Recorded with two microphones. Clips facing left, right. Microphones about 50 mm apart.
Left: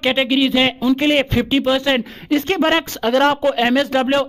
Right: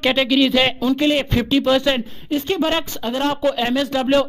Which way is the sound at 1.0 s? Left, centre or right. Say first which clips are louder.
Left 1 dB; left.